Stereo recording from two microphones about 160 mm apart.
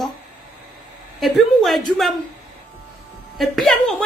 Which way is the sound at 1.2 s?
Centre (ahead or behind).